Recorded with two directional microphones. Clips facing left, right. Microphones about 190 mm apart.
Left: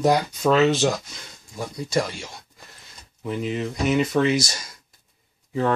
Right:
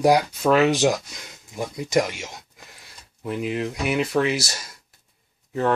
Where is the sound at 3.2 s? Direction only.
5° right (ahead or behind).